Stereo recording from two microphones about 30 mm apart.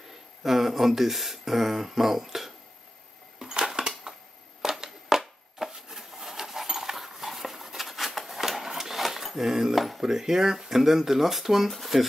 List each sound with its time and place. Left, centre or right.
0.4 s speech: centre
3.3 s a sound: centre
9.8 s speech: centre
10.0 s speech: centre